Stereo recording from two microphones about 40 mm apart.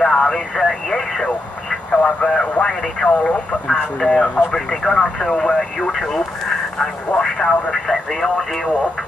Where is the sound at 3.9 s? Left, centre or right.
Centre.